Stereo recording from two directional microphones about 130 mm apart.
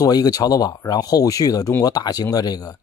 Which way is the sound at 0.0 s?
30° left (ahead or behind).